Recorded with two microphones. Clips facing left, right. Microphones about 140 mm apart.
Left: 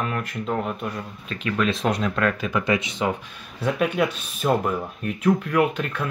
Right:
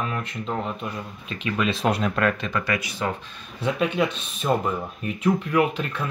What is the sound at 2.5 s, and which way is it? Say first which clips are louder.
Speech: left 4 dB; 20° left (ahead or behind).